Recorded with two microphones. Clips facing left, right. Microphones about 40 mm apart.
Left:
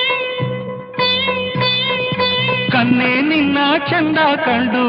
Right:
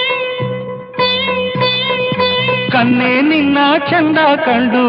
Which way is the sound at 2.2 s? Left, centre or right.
Centre.